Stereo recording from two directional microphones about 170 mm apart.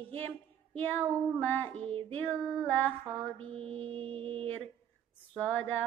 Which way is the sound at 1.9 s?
30° right (ahead or behind).